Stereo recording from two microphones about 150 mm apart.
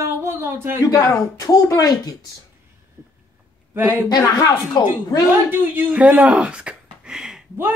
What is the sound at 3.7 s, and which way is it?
Speech, 20° right (ahead or behind).